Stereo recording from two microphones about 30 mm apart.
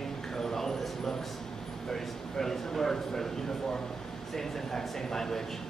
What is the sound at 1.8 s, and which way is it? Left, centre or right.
A man's voice, centre.